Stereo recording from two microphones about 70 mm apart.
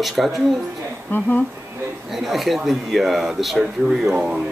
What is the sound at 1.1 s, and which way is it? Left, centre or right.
Speech, left.